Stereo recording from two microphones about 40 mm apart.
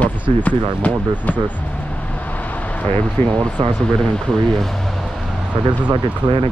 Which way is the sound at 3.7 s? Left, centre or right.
Centre.